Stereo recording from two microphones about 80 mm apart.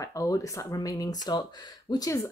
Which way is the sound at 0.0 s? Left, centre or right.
Left.